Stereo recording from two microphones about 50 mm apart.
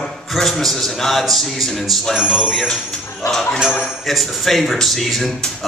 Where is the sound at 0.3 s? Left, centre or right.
Centre.